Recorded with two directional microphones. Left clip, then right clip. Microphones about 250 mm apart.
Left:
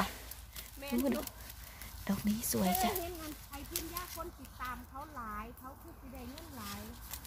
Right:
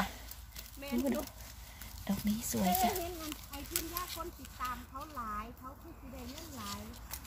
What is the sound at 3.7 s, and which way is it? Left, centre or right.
Speech, centre.